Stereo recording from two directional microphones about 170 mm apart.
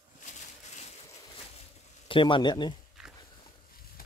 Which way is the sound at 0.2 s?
45° left (ahead or behind).